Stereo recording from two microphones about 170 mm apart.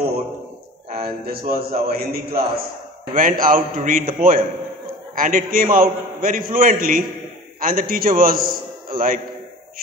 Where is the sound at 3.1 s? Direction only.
55° right (ahead or behind).